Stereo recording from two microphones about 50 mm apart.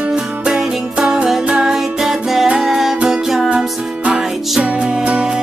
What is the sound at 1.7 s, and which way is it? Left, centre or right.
Music, centre.